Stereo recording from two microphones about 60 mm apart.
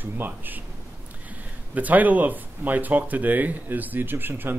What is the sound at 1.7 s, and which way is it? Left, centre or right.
Speech, right.